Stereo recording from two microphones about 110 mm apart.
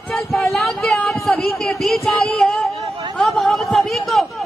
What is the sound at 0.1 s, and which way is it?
Speech, centre (ahead or behind).